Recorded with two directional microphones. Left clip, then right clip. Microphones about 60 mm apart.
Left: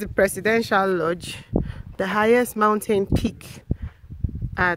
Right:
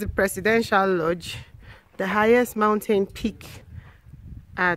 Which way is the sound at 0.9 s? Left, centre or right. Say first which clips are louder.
Left 1 dB; left.